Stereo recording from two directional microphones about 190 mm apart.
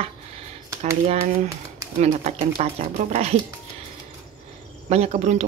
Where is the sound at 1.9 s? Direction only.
35° right (ahead or behind).